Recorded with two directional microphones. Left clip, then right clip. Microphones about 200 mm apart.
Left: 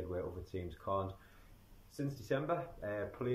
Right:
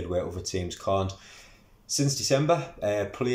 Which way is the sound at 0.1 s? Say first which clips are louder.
Right 12 dB; 10° right (ahead or behind).